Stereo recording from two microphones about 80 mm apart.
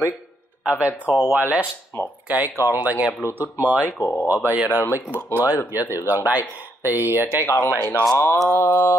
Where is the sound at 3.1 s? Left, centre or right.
Left.